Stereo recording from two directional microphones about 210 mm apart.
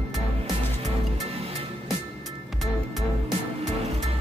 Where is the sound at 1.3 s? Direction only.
30° right (ahead or behind).